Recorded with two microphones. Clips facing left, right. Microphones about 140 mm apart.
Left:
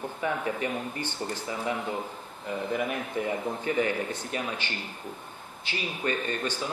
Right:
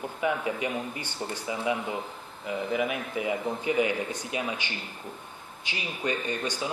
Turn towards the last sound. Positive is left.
turn(degrees=-15)  # may be behind; listen again after turning